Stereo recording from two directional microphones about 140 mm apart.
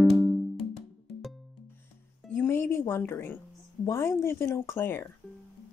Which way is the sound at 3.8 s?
20° left (ahead or behind).